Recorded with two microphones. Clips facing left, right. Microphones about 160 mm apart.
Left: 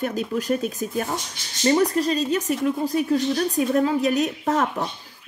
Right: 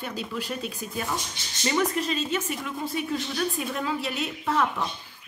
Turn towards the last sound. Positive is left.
turn(degrees=40)  # may be behind; listen again after turning